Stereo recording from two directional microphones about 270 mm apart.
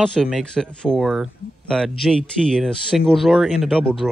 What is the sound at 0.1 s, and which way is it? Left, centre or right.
Speech, centre.